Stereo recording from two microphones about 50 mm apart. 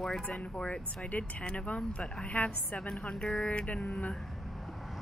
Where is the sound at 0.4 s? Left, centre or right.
Left.